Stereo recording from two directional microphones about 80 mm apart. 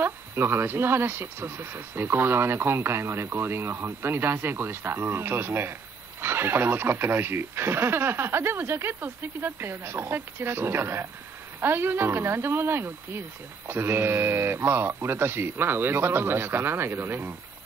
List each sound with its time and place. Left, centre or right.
0.0 s speech: right